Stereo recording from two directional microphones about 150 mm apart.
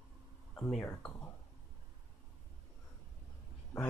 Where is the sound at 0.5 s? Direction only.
5° left (ahead or behind).